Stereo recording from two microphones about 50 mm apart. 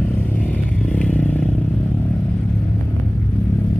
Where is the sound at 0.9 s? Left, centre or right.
Left.